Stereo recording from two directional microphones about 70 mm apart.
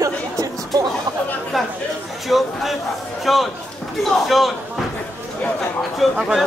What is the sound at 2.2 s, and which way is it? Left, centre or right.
Speech, centre.